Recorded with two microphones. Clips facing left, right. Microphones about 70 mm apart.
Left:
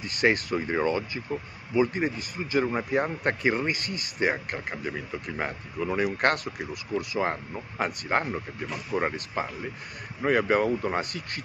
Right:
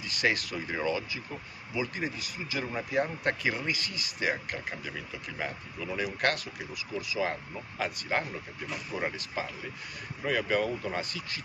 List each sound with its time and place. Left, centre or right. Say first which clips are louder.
0.0 s speech: left 5 dB; left
7.2 s speech: left 4 dB; left
11.0 s speech: left 4 dB; left